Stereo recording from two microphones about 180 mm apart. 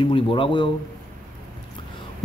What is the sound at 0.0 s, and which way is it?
Speech, 30° left (ahead or behind).